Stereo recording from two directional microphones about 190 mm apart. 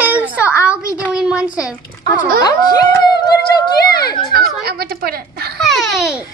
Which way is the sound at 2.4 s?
20° left (ahead or behind).